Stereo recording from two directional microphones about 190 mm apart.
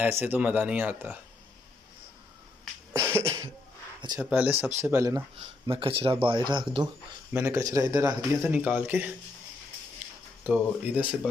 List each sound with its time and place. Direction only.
0.2 s speech: 10° right (ahead or behind)
2.9 s cough: 15° right (ahead or behind)
4.0 s speech: 20° right (ahead or behind)
4.3 s speech: 5° right (ahead or behind)
5.4 s speech: 30° right (ahead or behind)
7.3 s speech: 10° right (ahead or behind)
10.4 s speech: 10° right (ahead or behind)